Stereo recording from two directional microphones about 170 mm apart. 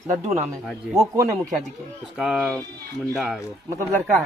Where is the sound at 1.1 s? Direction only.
20° right (ahead or behind).